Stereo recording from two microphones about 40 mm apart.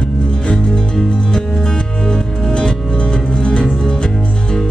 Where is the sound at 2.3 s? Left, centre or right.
Left.